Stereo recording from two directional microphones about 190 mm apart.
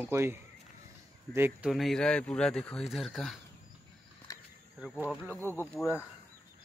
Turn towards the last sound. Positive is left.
turn(degrees=10)  # may be behind; listen again after turning